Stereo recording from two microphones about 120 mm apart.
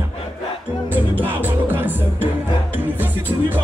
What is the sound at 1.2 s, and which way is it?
Speech, 15° right (ahead or behind).